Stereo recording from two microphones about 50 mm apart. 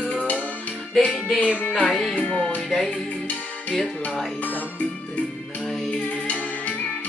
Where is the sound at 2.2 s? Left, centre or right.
Centre.